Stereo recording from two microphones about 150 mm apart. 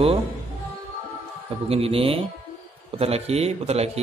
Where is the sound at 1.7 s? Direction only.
40° right (ahead or behind).